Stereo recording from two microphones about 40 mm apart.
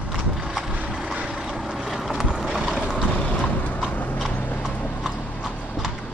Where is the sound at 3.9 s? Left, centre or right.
Left.